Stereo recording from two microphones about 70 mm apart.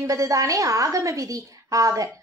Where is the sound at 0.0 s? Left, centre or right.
Right.